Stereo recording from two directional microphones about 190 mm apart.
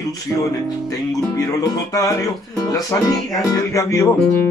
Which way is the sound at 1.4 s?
20° left (ahead or behind).